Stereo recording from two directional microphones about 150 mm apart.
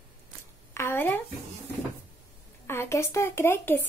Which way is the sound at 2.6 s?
15° left (ahead or behind).